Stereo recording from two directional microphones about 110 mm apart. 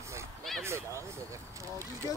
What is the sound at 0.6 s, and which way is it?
Speech, 25° right (ahead or behind).